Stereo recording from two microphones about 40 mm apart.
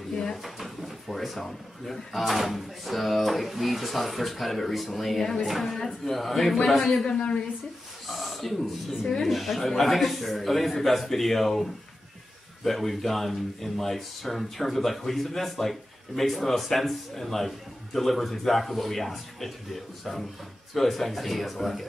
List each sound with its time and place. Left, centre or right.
0.1 s drawer open or close: centre
0.4 s drawer open or close: centre
1.1 s speech: centre
7.1 s a woman's voice: left
8.1 s a sound: centre
9.2 s speech: centre